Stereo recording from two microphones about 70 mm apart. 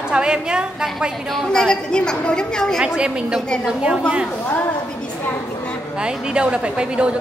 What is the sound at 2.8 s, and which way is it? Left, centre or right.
Speech, centre.